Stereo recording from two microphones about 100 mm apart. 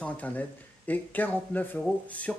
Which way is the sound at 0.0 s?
15° left (ahead or behind).